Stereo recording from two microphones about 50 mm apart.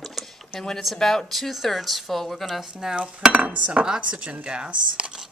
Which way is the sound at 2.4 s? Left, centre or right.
Centre.